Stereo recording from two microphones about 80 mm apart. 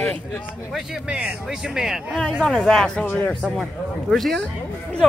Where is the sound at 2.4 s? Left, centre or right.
Centre.